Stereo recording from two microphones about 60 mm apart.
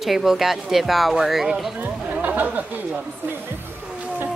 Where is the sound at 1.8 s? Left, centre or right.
Right.